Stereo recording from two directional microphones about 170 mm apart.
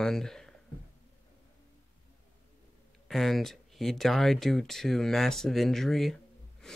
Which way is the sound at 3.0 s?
Centre (ahead or behind).